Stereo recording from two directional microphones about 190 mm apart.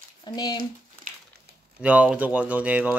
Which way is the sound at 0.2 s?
20° left (ahead or behind).